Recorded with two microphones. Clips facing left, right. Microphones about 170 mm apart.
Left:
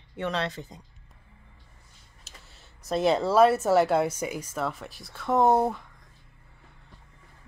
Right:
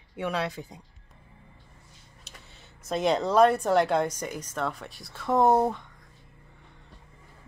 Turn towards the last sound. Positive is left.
turn(degrees=0)  # may be behind; listen again after turning